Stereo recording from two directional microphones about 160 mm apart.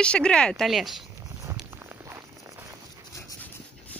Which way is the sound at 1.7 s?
15° right (ahead or behind).